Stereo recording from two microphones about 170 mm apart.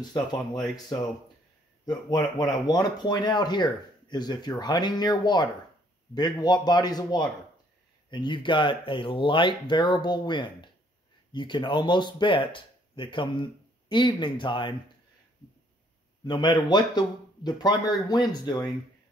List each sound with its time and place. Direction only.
0.9 s speech: 25° left (ahead or behind)
16.3 s speech: 25° left (ahead or behind)